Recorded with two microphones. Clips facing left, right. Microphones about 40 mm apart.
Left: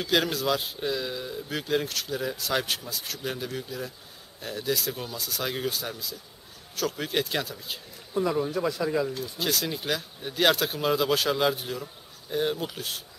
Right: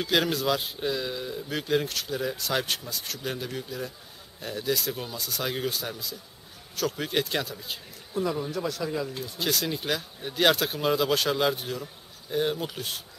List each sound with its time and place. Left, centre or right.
0.0 s speech: centre
8.1 s speech: centre
9.2 s speech: centre